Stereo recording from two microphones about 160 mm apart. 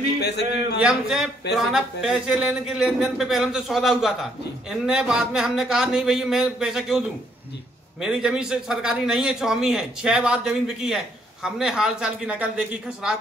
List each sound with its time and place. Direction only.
0.2 s speech: 90° left
0.7 s a man's voice: 5° right (ahead or behind)